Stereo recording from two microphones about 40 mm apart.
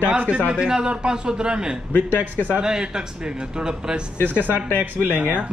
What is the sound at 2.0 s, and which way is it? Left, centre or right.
Speech, left.